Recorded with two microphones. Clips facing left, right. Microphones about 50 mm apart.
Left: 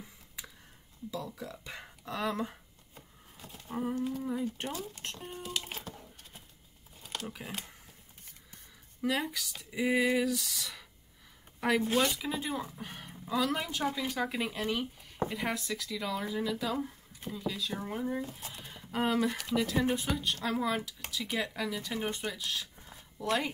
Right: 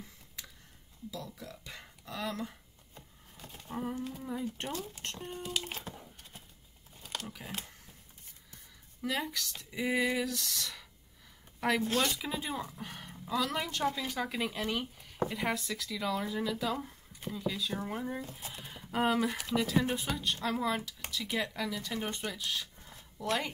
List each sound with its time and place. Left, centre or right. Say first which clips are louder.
1.1 s speech: left 5 dB; left
2.9 s a sound: even; centre
4.2 s speech: left 3 dB; centre
7.0 s crumpling: left 1 dB; centre
7.2 s speech: left 2 dB; centre
9.0 s speech: left 3 dB; centre
22.8 s a sound: left 1 dB; centre
23.1 s speech: left 2 dB; centre